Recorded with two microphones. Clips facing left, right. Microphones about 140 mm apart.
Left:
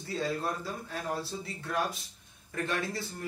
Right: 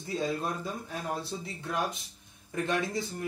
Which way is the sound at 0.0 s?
20° right (ahead or behind).